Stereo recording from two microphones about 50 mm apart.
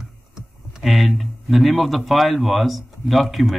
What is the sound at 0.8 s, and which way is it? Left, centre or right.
Speech, centre.